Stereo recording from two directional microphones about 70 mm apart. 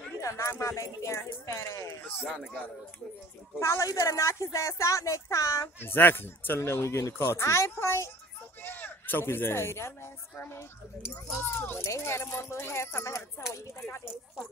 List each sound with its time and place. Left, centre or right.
0.2 s speech: left
2.0 s a child's voice: left
3.5 s speech: left
5.8 s speech: left
8.6 s a sound: left
9.2 s speech: left
11.4 s a child's voice: left